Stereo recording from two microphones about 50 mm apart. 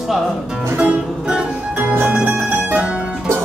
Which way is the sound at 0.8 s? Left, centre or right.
Centre.